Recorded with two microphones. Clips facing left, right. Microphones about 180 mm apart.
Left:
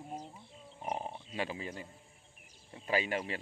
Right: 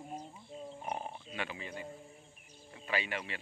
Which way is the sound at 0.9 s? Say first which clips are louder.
Left 6 dB; 25° left (ahead or behind).